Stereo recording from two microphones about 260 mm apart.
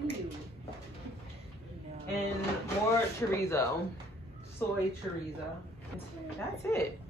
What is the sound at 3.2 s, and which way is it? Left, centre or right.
Speech, centre.